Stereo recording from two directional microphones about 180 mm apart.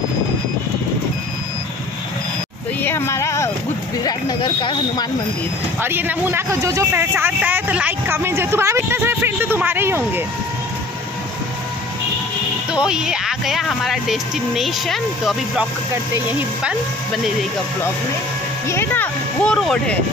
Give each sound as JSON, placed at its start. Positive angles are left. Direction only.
{"t": 2.8, "sound": "a sound", "side_deg": 15}
{"t": 4.0, "sound": "speech", "side_deg": 25}
{"t": 5.8, "sound": "speech", "side_deg": -10}
{"t": 12.7, "sound": "speech", "side_deg": -5}
{"t": 18.7, "sound": "speech", "side_deg": 10}